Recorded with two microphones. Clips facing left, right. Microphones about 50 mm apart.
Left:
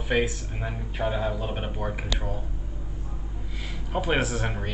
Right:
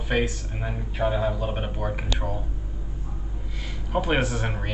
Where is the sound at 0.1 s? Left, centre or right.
Centre.